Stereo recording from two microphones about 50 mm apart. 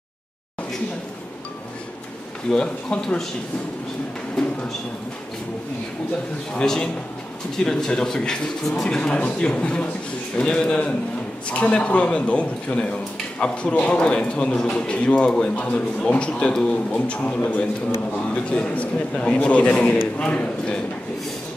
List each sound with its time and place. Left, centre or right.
2.5 s a man's voice: left
4.4 s a sound: centre
6.5 s a man's voice: centre